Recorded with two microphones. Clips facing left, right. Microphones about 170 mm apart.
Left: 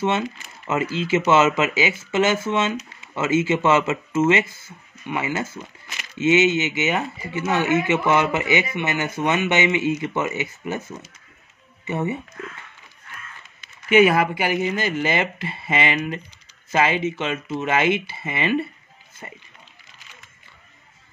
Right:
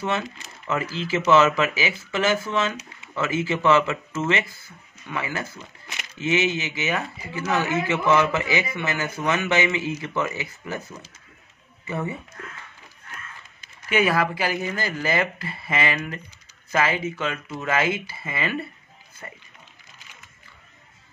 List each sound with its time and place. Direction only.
0.7 s speech: 20° left (ahead or behind)
13.9 s speech: 20° left (ahead or behind)